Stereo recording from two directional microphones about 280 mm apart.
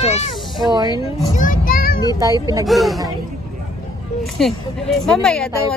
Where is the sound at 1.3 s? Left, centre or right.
Left.